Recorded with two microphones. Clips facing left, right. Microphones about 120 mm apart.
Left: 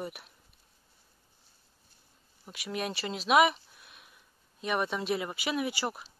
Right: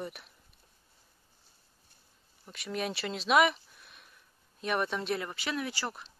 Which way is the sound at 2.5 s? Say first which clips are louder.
Even; 5° left (ahead or behind).